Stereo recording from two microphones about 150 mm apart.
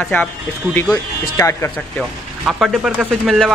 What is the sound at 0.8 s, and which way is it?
Speech, 25° left (ahead or behind).